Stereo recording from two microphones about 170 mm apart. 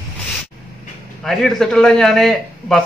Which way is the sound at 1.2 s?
Centre (ahead or behind).